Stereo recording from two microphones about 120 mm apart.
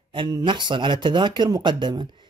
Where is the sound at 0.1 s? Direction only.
40° right (ahead or behind).